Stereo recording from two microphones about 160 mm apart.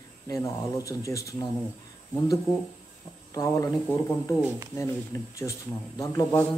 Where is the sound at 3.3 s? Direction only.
20° left (ahead or behind).